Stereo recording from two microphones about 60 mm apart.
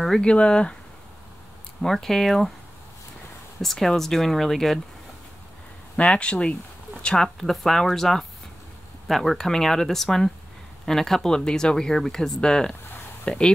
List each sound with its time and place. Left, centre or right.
0.2 s speech: centre
1.8 s speech: centre
3.6 s speech: centre
6.0 s speech: centre
7.3 s speech: centre